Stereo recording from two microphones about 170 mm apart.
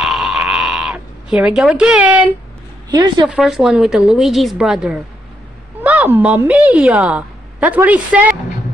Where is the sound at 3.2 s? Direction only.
5° right (ahead or behind).